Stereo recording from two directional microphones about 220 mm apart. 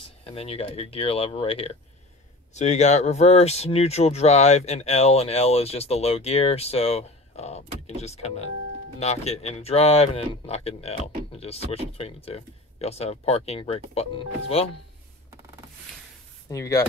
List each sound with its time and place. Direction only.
0.2 s speech: 25° left (ahead or behind)
16.4 s speech: 15° left (ahead or behind)